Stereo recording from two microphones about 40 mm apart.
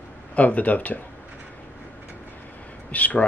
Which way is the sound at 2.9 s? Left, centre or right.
Left.